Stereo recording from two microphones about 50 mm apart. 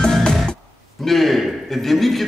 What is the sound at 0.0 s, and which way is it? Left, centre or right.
Music, centre.